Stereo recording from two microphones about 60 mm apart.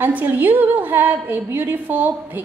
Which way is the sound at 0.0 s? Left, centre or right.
Right.